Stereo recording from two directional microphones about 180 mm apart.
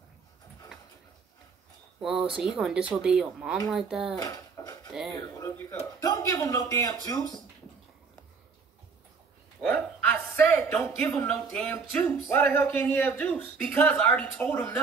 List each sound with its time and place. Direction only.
2.0 s speech: 5° right (ahead or behind)
4.2 s dishes: 20° left (ahead or behind)
5.4 s speech: 20° left (ahead or behind)
9.6 s a sound: 5° left (ahead or behind)
10.8 s a man's voice: 5° left (ahead or behind)